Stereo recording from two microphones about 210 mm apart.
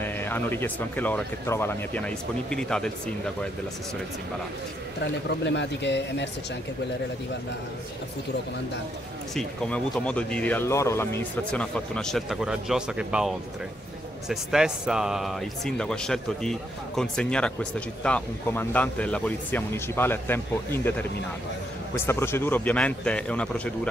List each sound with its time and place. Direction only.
0.0 s speech: 10° left (ahead or behind)
5.0 s speech: 55° left (ahead or behind)
9.3 s speech: 5° left (ahead or behind)
14.3 s speech: centre (ahead or behind)